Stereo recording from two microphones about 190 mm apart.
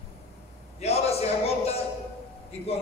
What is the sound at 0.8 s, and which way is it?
A man's voice, 35° left (ahead or behind).